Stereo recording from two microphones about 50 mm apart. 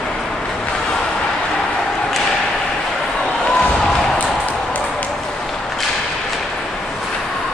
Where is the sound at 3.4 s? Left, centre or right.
Left.